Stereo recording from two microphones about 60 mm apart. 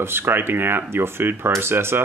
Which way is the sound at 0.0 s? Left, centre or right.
Right.